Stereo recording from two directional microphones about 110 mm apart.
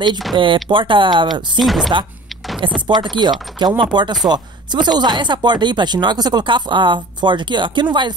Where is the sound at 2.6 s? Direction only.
50° right (ahead or behind).